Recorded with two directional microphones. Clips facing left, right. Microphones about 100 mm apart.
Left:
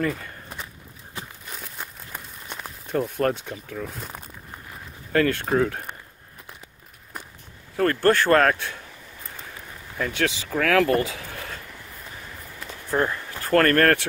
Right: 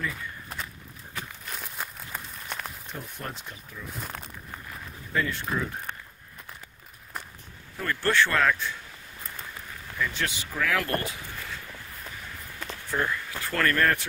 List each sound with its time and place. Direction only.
0.0 s speech: 55° left (ahead or behind)
1.6 s a sound: 5° right (ahead or behind)
2.4 s a sound: 10° left (ahead or behind)
2.9 s speech: 60° left (ahead or behind)
5.1 s speech: 65° left (ahead or behind)
7.7 s speech: 55° left (ahead or behind)
9.9 s speech: 50° left (ahead or behind)
10.2 s speech: 80° left
12.9 s a sound: 35° left (ahead or behind)
13.5 s speech: 50° left (ahead or behind)